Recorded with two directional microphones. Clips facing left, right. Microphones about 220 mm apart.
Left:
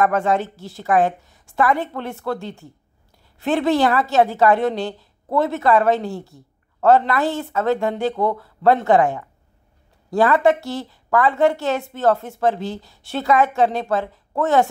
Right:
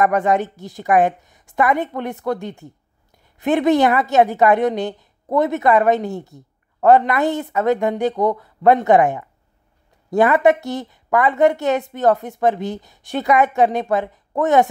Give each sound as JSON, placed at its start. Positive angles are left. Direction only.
{"t": 0.0, "sound": "a woman's voice", "side_deg": -20}